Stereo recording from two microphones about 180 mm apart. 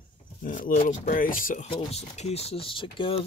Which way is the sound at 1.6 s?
35° left (ahead or behind).